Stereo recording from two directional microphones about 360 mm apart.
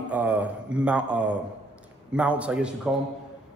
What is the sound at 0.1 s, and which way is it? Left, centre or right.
A man's voice, centre.